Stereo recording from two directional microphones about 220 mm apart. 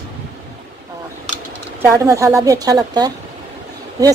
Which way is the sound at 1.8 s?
15° right (ahead or behind).